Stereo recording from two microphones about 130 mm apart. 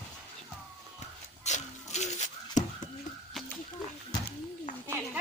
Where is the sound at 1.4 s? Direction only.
60° left (ahead or behind).